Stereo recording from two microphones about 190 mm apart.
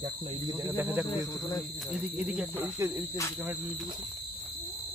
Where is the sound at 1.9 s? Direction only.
5° right (ahead or behind).